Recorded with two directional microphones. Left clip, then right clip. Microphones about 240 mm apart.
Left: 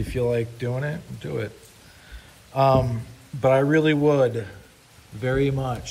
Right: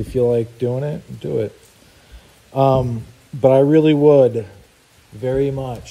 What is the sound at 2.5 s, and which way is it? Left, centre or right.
Speech, right.